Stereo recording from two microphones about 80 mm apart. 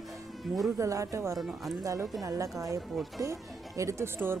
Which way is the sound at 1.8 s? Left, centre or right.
Right.